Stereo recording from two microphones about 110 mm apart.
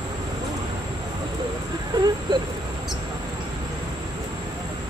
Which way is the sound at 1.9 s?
40° right (ahead or behind).